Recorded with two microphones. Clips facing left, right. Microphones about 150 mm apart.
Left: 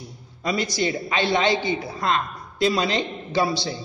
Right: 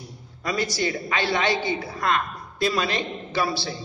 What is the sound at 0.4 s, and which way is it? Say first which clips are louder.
A woman's voice: left 2 dB; 20° left (ahead or behind).